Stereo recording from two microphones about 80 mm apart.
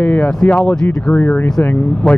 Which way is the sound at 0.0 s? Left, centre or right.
Centre.